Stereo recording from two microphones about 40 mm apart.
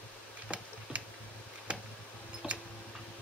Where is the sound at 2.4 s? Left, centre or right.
Centre.